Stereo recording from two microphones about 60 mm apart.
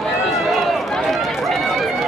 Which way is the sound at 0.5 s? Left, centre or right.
Centre.